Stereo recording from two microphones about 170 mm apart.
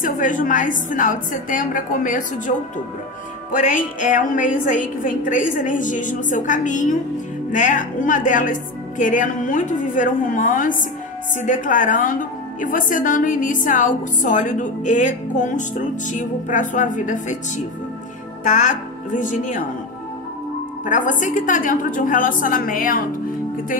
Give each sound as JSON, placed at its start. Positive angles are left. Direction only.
{"t": 0.0, "sound": "a woman's voice", "side_deg": 50}
{"t": 3.5, "sound": "a woman's voice", "side_deg": 50}
{"t": 18.4, "sound": "a woman's voice", "side_deg": 50}
{"t": 20.8, "sound": "a woman's voice", "side_deg": 50}